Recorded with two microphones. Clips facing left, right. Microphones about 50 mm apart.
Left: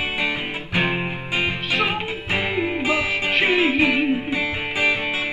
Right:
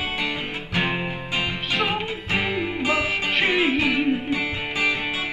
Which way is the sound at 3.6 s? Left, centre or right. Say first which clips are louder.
Left 2 dB; centre.